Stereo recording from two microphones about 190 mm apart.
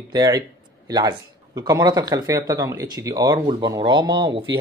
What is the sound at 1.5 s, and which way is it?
Speech, 20° right (ahead or behind).